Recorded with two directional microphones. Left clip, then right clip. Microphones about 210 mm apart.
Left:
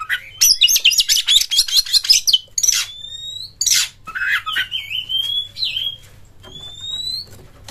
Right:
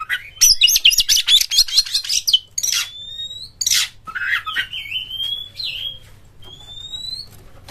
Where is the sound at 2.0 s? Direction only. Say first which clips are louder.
Left 3 dB; 30° left (ahead or behind).